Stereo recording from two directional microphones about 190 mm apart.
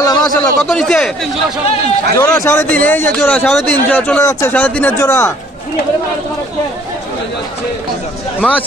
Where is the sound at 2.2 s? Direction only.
15° left (ahead or behind).